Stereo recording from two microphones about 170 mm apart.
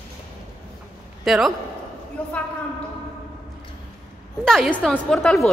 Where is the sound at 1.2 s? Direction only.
Centre (ahead or behind).